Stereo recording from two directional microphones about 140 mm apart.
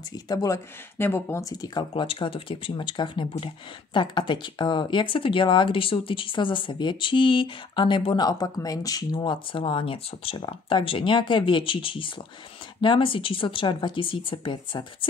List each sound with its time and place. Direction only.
0.3 s speech: 25° left (ahead or behind)